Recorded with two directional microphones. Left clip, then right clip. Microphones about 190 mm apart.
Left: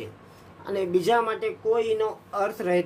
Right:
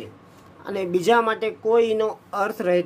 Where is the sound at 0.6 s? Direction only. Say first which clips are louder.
Right 3 dB; 30° right (ahead or behind).